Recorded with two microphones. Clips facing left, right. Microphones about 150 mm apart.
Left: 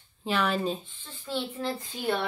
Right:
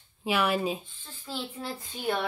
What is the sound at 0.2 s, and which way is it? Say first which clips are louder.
Speech: right 1 dB; 10° right (ahead or behind).